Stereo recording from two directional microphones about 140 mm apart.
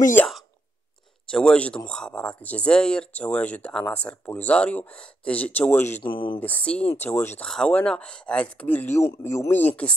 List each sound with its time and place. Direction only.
0.2 s speech: 15° left (ahead or behind)
6.1 s speech: 35° left (ahead or behind)
6.4 s speech: 10° left (ahead or behind)